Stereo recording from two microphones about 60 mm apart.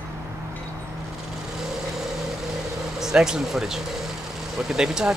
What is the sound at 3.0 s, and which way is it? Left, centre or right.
Speech, centre.